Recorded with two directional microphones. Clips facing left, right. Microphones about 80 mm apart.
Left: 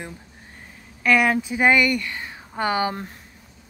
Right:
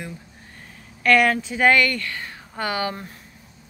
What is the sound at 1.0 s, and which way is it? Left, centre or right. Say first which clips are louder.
A woman's voice: right 1 dB; centre.